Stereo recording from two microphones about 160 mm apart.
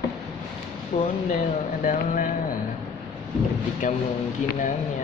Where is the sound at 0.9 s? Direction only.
50° left (ahead or behind).